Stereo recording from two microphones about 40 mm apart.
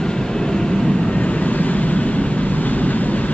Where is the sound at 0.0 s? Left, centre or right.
Centre.